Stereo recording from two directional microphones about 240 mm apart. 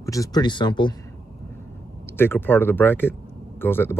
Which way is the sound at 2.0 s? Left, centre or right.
Centre.